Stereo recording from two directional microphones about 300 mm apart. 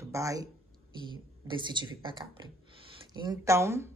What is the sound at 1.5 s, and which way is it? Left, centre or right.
Speech, centre.